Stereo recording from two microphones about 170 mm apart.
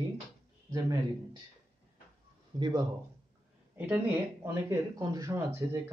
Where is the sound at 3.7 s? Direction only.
10° right (ahead or behind).